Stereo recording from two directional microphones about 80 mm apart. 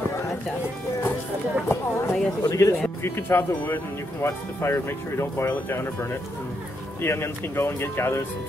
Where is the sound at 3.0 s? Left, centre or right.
Left.